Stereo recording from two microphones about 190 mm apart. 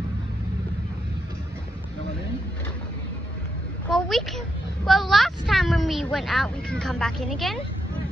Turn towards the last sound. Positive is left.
turn(degrees=0)  # may be behind; listen again after turning